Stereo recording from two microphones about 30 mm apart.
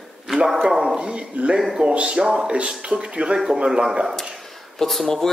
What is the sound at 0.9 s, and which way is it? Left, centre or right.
Speech, right.